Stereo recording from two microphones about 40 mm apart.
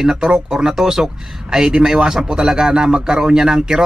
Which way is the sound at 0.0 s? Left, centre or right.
Centre.